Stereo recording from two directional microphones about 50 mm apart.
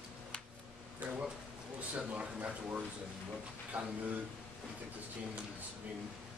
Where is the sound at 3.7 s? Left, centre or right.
Right.